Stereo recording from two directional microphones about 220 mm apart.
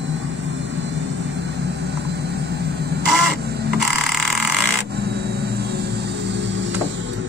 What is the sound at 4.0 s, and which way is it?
Vehicle, centre (ahead or behind).